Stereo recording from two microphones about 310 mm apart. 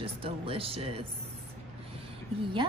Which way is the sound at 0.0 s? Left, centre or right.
Centre.